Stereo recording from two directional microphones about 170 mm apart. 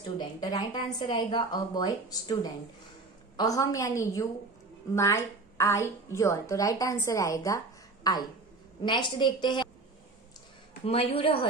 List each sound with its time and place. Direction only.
0.4 s a woman's voice: 25° left (ahead or behind)
10.9 s a woman's voice: 35° left (ahead or behind)